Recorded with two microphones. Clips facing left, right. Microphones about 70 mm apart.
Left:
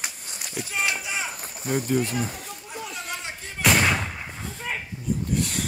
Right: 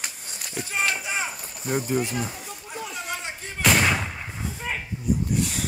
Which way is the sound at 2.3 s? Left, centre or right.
Centre.